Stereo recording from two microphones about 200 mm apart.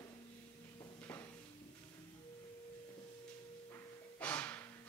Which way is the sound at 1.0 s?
10° left (ahead or behind).